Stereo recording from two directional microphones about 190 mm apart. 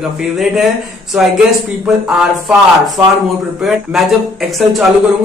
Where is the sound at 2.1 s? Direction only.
5° right (ahead or behind).